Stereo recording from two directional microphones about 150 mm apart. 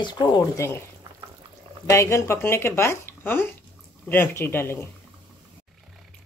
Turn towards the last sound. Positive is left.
turn(degrees=15)  # may be behind; listen again after turning